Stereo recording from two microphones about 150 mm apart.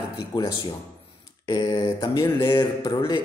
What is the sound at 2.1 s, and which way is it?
Speech, 20° left (ahead or behind).